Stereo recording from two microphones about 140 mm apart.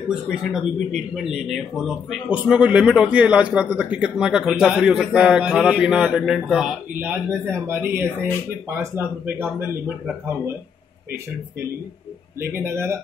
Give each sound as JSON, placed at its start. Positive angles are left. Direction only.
{"t": 0.5, "sound": "speech", "side_deg": 0}
{"t": 12.5, "sound": "speech", "side_deg": -20}